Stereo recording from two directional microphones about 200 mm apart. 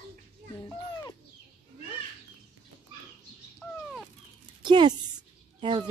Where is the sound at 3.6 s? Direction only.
5° left (ahead or behind).